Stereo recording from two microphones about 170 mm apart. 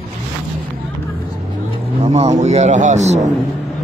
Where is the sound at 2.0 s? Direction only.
40° right (ahead or behind).